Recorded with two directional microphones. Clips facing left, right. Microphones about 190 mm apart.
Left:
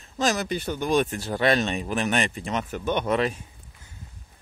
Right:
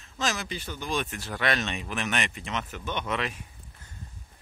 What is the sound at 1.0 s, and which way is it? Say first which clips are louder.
Speech: left 7 dB; 30° left (ahead or behind).